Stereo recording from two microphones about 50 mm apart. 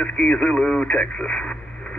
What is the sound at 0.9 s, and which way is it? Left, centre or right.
Speech, centre.